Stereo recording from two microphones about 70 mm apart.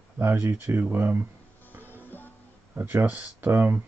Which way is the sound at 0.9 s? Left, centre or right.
Right.